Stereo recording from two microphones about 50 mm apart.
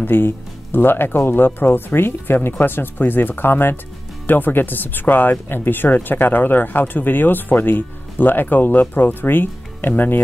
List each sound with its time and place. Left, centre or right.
0.0 s speech: left